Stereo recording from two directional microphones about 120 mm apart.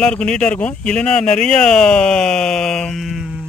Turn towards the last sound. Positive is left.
turn(degrees=-5)  # may be behind; listen again after turning